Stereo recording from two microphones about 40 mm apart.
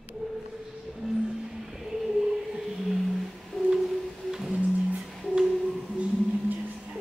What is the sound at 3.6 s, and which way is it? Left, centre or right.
Music, centre.